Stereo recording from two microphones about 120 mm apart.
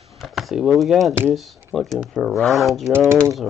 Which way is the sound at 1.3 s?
Centre (ahead or behind).